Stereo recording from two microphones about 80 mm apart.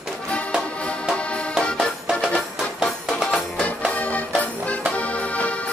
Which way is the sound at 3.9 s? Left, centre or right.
Centre.